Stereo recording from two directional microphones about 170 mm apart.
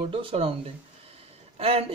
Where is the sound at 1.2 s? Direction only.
35° right (ahead or behind).